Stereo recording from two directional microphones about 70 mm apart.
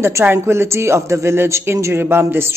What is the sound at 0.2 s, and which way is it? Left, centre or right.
Speech, right.